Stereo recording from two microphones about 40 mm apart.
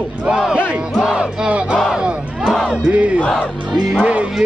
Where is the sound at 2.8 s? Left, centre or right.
Right.